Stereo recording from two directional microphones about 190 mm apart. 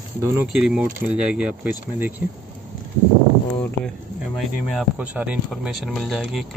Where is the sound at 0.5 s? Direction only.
5° right (ahead or behind).